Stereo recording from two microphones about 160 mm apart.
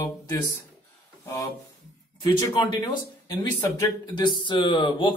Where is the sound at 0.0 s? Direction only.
20° left (ahead or behind).